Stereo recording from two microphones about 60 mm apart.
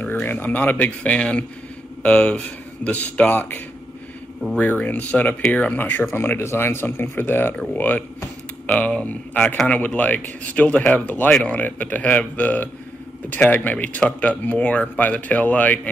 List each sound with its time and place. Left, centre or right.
0.0 s speech: left